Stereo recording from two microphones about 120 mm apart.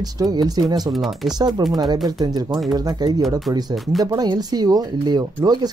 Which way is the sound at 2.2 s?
35° right (ahead or behind).